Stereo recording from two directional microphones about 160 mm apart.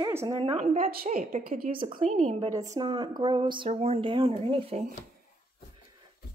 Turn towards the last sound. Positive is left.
turn(degrees=-35)  # may be behind; listen again after turning